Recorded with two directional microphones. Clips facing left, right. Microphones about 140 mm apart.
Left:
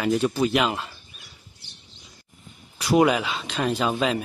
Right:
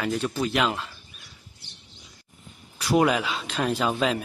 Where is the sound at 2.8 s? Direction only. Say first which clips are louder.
Left 2 dB; 5° left (ahead or behind).